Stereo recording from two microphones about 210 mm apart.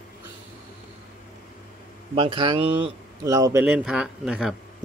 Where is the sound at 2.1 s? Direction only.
25° right (ahead or behind).